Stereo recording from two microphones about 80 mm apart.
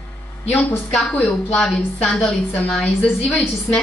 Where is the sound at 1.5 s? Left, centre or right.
Centre.